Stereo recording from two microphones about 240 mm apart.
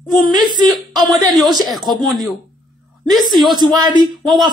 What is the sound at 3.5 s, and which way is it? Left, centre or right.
Speech, centre.